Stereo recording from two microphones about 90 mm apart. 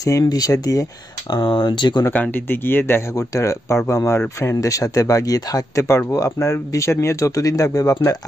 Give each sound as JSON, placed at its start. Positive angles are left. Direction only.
{"t": 0.0, "sound": "speech", "side_deg": 45}
{"t": 1.3, "sound": "speech", "side_deg": 55}
{"t": 2.1, "sound": "speech", "side_deg": 20}
{"t": 3.2, "sound": "speech", "side_deg": 35}